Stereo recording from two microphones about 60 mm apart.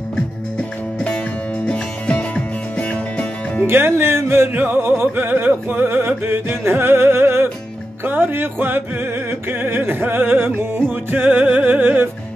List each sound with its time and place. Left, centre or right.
0.1 s music: centre
3.6 s speech: right
4.6 s music: right